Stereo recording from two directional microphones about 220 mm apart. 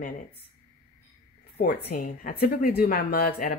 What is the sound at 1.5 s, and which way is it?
Speech, 45° left (ahead or behind).